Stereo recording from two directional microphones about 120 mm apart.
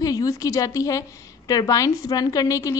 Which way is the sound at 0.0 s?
30° left (ahead or behind).